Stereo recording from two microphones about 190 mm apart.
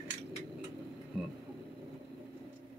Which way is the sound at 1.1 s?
Centre (ahead or behind).